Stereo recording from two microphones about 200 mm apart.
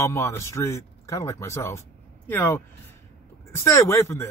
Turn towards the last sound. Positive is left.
turn(degrees=15)  # may be behind; listen again after turning